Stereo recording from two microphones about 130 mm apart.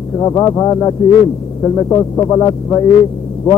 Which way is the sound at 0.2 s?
30° left (ahead or behind).